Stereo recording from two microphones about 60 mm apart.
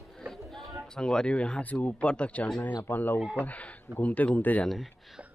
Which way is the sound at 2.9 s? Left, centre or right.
Left.